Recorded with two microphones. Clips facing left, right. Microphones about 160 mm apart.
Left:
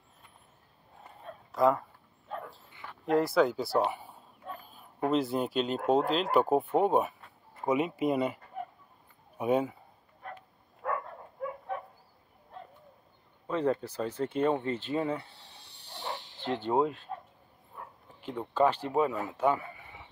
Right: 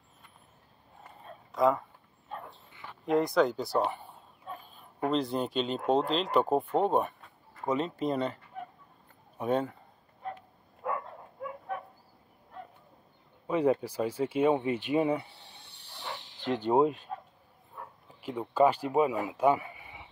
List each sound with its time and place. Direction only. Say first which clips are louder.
1.5 s speech: even; centre (ahead or behind)
2.9 s speech: even; centre (ahead or behind)
9.4 s speech: left 2 dB; 10° left (ahead or behind)
10.8 s dog: even; 15° right (ahead or behind)
13.5 s speech: right 3 dB; 10° right (ahead or behind)
16.4 s speech: right 3 dB; 15° right (ahead or behind)
18.2 s speech: right 2 dB; 10° right (ahead or behind)